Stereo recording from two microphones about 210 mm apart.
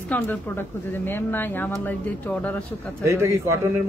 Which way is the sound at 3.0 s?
15° right (ahead or behind).